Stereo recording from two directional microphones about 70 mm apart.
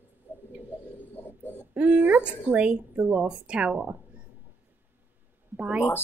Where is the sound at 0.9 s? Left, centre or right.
Left.